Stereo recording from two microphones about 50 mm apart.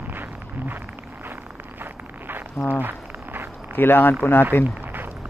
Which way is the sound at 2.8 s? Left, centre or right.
Right.